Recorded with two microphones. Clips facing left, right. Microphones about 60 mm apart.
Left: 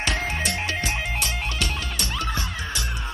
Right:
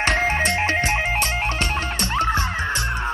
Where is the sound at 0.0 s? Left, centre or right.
Right.